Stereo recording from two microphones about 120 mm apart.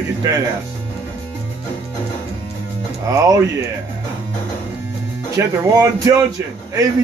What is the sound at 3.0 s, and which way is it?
Speech, 30° right (ahead or behind).